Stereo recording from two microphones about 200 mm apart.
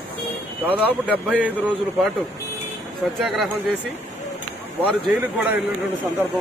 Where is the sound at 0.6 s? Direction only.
10° right (ahead or behind).